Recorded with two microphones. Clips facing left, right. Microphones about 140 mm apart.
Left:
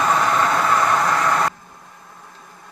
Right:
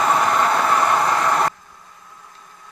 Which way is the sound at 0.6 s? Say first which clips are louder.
Even; 20° right (ahead or behind).